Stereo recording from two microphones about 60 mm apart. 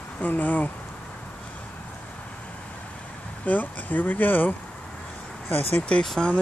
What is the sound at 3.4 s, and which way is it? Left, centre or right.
Speech, left.